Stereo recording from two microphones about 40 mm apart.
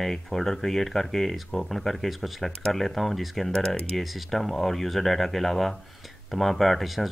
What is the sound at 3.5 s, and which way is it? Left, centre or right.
Speech, left.